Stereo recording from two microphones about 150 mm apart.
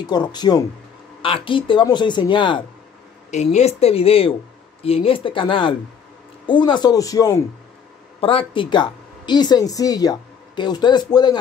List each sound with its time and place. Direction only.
0.0 s a man's voice: 30° left (ahead or behind)
3.3 s a man's voice: 50° left (ahead or behind); by 7.4 s 25° left (ahead or behind)
8.2 s speech: 35° left (ahead or behind)